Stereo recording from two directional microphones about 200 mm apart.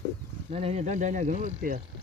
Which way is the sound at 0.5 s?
30° right (ahead or behind).